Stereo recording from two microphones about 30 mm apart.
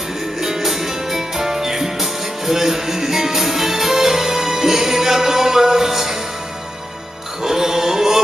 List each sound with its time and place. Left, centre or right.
0.4 s music: centre
7.4 s music: centre